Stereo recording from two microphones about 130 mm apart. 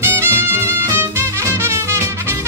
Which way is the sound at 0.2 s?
20° right (ahead or behind).